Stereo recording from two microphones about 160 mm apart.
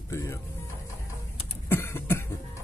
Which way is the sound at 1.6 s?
15° left (ahead or behind).